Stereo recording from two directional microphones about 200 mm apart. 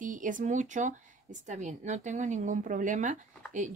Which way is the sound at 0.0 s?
40° right (ahead or behind).